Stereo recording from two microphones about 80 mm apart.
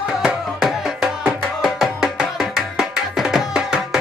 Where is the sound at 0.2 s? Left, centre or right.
Centre.